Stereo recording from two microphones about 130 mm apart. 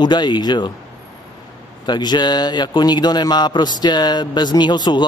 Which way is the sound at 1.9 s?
35° left (ahead or behind).